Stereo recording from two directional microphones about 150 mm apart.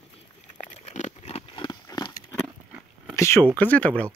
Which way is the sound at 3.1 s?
20° left (ahead or behind).